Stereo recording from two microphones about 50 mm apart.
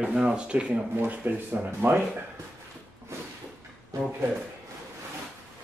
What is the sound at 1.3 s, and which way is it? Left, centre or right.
Speech, right.